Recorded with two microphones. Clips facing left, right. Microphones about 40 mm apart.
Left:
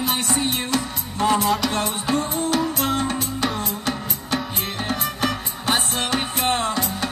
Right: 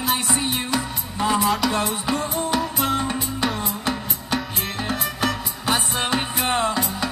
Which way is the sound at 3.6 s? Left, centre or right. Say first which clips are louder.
Even; right.